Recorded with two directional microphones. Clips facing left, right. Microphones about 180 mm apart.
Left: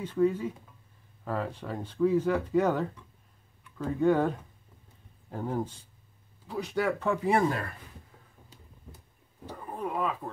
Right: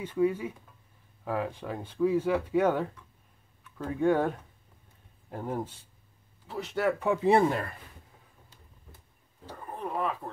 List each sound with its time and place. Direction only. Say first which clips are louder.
0.0 s speech: left 1 dB; 10° right (ahead or behind)
5.3 s speech: left 2 dB; 5° right (ahead or behind)
7.1 s speech: right 4 dB; 25° right (ahead or behind)
9.5 s pigeon: left 1 dB; 5° left (ahead or behind)